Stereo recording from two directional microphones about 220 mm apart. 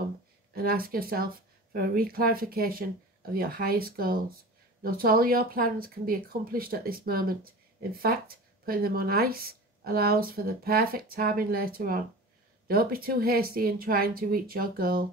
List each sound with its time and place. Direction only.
0.6 s speech: 45° right (ahead or behind)